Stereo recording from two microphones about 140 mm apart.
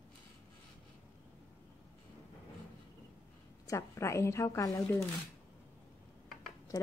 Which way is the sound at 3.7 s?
20° left (ahead or behind).